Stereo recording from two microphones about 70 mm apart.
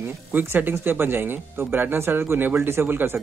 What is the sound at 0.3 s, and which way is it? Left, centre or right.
Speech, right.